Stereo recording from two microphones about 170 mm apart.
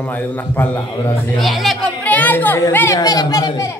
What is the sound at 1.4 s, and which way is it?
Speech, centre (ahead or behind).